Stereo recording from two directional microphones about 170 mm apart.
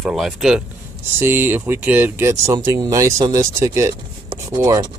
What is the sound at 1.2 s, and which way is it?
Speech, 15° right (ahead or behind).